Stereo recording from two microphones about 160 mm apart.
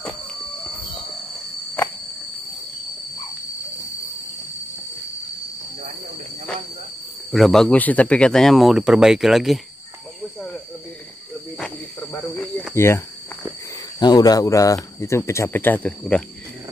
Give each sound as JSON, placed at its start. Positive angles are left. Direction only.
{"t": 7.3, "sound": "speech", "side_deg": 0}
{"t": 12.7, "sound": "speech", "side_deg": 15}
{"t": 13.9, "sound": "speech", "side_deg": 25}